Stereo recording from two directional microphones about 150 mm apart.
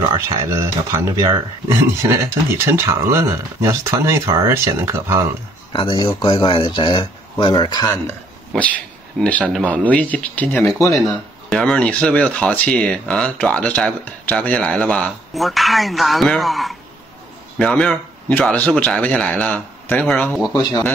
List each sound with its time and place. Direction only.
0.4 s speech: 20° right (ahead or behind)
5.7 s speech: 30° left (ahead or behind)
8.5 s speech: 10° left (ahead or behind)